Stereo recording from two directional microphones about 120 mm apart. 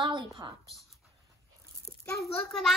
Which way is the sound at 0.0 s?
40° right (ahead or behind).